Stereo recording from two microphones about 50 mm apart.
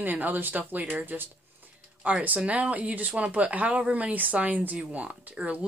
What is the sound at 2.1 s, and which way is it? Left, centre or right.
Speech, right.